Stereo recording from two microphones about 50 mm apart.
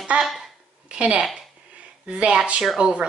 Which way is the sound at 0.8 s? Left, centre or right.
Right.